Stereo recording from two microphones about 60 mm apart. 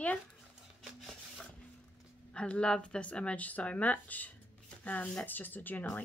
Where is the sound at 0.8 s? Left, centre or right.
Centre.